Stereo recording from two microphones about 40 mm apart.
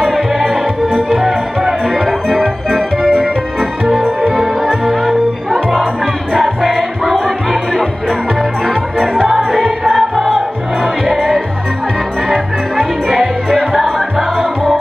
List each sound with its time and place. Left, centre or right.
1.2 s music: centre
3.0 s music: left
4.8 s music: centre
9.0 s music: centre
9.9 s music: centre
11.1 s music: centre